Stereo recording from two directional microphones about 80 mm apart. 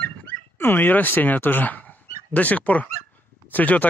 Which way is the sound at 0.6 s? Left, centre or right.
Left.